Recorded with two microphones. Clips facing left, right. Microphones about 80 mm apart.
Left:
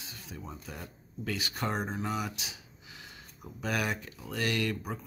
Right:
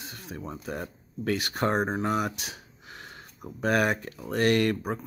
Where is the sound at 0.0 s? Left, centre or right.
Right.